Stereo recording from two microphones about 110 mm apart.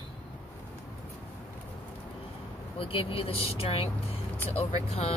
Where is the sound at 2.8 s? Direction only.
55° left (ahead or behind).